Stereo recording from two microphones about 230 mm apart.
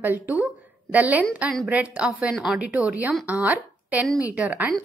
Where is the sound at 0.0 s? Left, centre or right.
Centre.